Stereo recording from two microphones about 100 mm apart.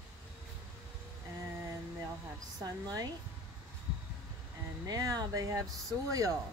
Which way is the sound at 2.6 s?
35° right (ahead or behind).